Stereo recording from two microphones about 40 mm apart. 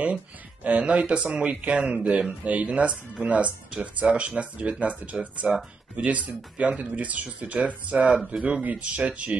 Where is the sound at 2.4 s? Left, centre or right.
Right.